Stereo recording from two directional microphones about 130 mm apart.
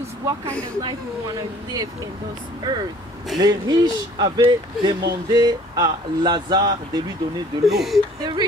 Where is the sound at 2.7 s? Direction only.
30° right (ahead or behind).